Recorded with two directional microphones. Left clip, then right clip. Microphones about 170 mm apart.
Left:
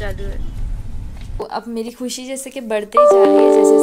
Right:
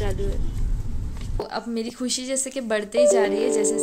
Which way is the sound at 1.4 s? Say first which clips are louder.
Left 4 dB; centre (ahead or behind).